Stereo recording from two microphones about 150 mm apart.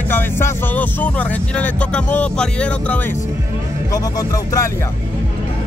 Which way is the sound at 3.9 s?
25° left (ahead or behind).